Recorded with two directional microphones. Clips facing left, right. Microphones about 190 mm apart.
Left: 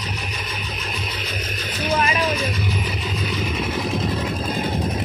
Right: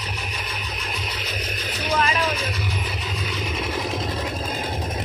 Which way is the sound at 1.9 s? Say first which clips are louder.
Left 1 dB; 15° left (ahead or behind).